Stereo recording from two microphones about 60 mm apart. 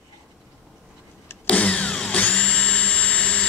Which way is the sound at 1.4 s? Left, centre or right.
Centre.